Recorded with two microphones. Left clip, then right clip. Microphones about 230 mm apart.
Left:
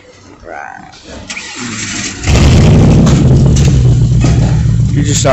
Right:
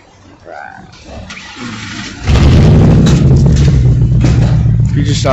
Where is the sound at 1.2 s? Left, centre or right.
Left.